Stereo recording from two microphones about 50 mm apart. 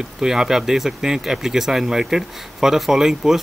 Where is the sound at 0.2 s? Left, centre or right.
Centre.